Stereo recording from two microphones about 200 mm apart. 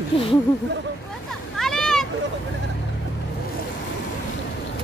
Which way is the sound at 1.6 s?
5° left (ahead or behind).